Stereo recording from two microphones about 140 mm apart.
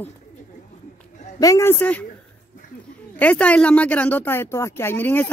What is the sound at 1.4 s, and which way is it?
Speech, 20° left (ahead or behind).